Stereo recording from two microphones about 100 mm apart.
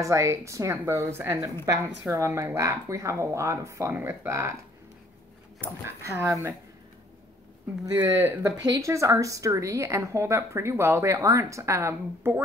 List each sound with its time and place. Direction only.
0.0 s speech: 30° right (ahead or behind)
3.9 s speech: 20° right (ahead or behind)
5.6 s speech: 25° right (ahead or behind)
7.9 s speech: 20° right (ahead or behind)
8.6 s a woman's voice: 35° right (ahead or behind)